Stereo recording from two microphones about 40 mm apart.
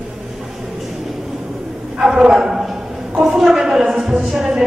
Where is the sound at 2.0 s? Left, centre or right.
Centre.